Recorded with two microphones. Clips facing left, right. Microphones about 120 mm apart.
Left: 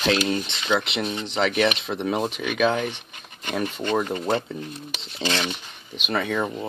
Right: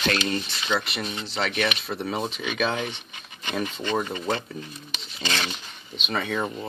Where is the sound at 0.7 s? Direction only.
20° left (ahead or behind).